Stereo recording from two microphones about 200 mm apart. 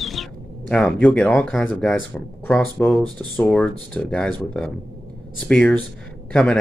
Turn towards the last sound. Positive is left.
turn(degrees=5)  # may be behind; listen again after turning